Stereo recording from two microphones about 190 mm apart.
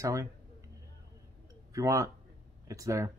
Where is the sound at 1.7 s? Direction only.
15° right (ahead or behind).